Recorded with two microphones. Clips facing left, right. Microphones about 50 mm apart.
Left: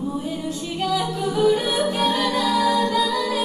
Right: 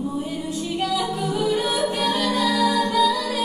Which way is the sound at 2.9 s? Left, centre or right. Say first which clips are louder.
Right 1 dB; left.